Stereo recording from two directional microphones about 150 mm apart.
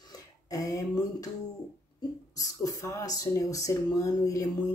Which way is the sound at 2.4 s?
25° left (ahead or behind).